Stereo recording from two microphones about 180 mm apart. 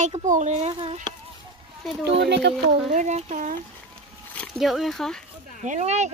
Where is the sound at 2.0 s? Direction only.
70° right (ahead or behind).